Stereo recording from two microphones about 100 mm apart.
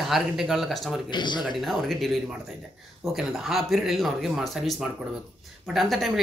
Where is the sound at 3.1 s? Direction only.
Centre (ahead or behind).